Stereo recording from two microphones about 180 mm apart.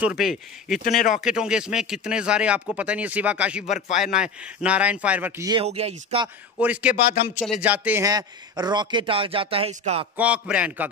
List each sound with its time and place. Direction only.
0.0 s speech: centre (ahead or behind)
3.6 s a man's voice: 40° left (ahead or behind)
4.0 s a man's voice: 5° right (ahead or behind)
5.6 s speech: 35° right (ahead or behind)
6.6 s a man's voice: 5° right (ahead or behind)
8.0 s speech: 20° right (ahead or behind)
10.1 s a man's voice: 5° right (ahead or behind)